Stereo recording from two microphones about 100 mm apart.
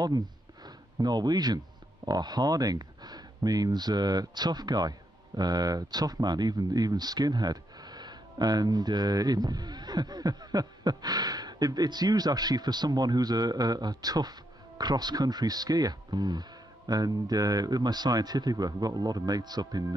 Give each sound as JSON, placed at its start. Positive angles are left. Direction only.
{"t": 0.7, "sound": "speech", "side_deg": -45}